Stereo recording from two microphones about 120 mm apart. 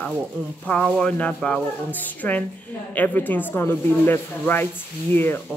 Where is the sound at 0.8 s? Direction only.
5° left (ahead or behind).